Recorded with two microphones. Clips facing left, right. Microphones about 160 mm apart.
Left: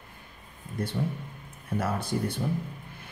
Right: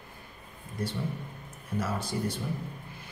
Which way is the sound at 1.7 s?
55° left (ahead or behind).